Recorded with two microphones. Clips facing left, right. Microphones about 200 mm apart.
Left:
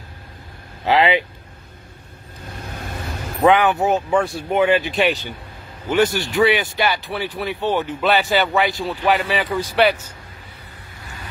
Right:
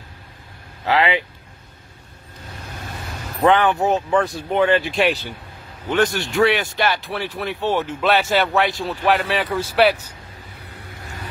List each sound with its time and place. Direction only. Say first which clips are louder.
0.8 s speech: left 2 dB; 20° left (ahead or behind)
3.1 s vehicle: left 1 dB; 5° left (ahead or behind)
3.9 s speech: even; centre (ahead or behind)
6.3 s speech: right 1 dB; centre (ahead or behind)